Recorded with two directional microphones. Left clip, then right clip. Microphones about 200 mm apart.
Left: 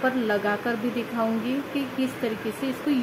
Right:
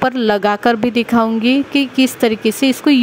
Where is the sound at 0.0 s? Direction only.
50° right (ahead or behind).